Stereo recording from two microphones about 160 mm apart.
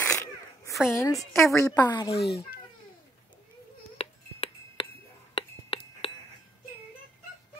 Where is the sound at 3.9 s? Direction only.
35° left (ahead or behind).